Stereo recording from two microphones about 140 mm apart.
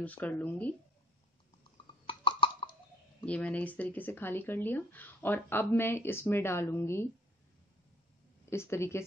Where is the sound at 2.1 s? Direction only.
35° left (ahead or behind).